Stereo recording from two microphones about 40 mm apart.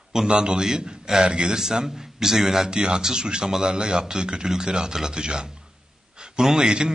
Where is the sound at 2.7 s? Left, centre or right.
Right.